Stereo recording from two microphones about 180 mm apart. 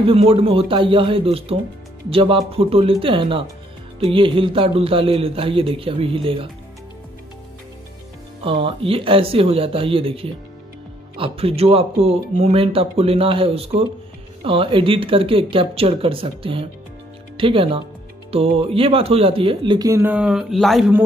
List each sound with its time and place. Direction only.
0.0 s speech: 30° right (ahead or behind)
8.5 s speech: 30° right (ahead or behind); by 20.9 s centre (ahead or behind)